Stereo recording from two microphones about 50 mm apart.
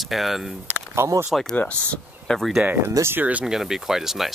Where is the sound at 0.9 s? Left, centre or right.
Right.